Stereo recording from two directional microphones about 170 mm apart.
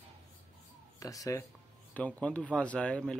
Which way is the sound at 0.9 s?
20° left (ahead or behind).